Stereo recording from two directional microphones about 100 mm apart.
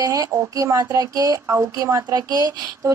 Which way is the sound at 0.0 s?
35° right (ahead or behind).